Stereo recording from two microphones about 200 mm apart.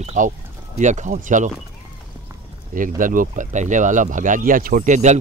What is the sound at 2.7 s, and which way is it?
Speech, 40° right (ahead or behind).